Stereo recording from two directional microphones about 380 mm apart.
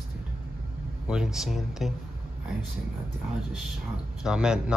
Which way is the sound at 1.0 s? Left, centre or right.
Centre.